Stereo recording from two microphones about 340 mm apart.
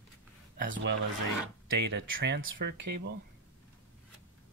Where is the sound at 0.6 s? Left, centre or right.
Right.